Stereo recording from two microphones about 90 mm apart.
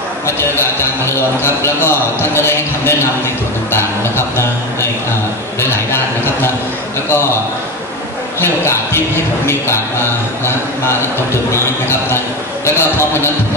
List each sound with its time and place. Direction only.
0.4 s a man's voice: 30° left (ahead or behind)
5.6 s a man's voice: 25° left (ahead or behind)
8.4 s a man's voice: 30° left (ahead or behind)
11.5 s a man's voice: 30° left (ahead or behind)